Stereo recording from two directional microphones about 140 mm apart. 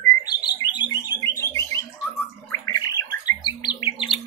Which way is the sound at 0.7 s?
25° left (ahead or behind).